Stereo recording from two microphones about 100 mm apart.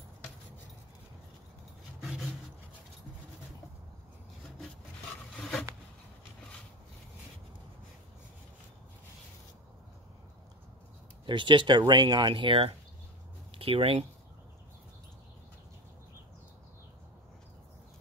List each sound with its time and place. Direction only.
2.0 s a sound: 5° right (ahead or behind)
5.3 s rub: 5° left (ahead or behind)
11.2 s speech: 55° right (ahead or behind)